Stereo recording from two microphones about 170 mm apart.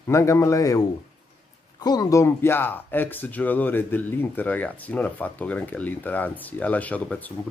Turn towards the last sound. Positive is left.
turn(degrees=10)  # may be behind; listen again after turning